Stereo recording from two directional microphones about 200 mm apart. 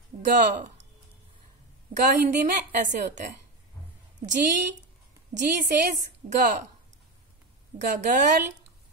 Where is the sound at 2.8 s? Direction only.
35° right (ahead or behind).